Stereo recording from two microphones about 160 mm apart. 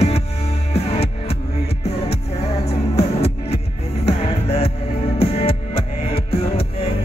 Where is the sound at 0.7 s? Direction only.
40° left (ahead or behind).